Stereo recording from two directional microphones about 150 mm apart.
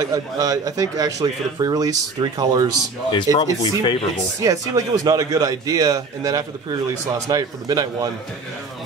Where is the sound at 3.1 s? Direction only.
30° left (ahead or behind).